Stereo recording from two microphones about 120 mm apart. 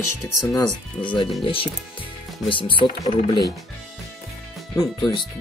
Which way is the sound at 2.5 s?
45° left (ahead or behind).